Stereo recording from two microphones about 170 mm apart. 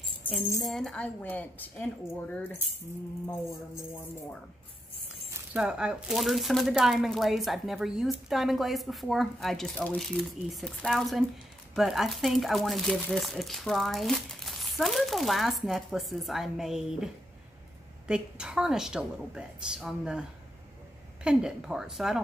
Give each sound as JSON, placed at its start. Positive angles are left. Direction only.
{"t": 0.2, "sound": "music", "side_deg": 10}
{"t": 0.7, "sound": "a woman's voice", "side_deg": 0}
{"t": 5.5, "sound": "speech", "side_deg": -5}